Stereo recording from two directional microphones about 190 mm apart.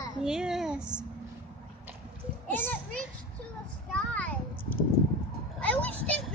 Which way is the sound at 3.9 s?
5° left (ahead or behind).